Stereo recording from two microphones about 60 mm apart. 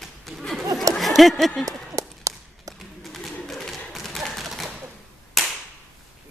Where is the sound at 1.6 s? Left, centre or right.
Right.